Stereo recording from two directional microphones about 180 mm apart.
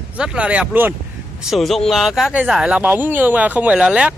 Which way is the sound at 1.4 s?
Centre (ahead or behind).